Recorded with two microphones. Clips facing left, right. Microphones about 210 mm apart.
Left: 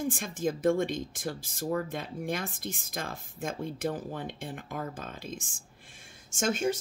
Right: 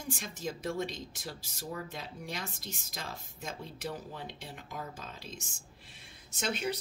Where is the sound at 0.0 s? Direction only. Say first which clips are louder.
Left 8 dB; 50° left (ahead or behind).